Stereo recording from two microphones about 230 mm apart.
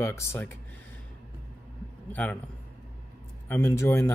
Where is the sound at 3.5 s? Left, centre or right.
Centre.